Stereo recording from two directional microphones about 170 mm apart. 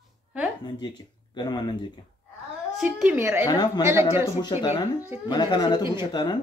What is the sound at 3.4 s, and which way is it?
Speech, 25° left (ahead or behind).